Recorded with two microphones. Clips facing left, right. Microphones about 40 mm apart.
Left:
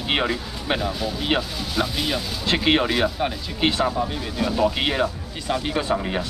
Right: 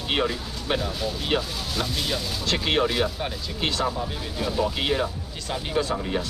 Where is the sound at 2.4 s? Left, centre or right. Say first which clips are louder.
Left 4 dB; left.